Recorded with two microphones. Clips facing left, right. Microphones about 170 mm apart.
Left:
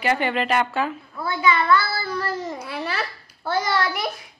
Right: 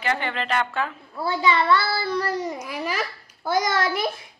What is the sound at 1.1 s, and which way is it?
A child's voice, 30° right (ahead or behind).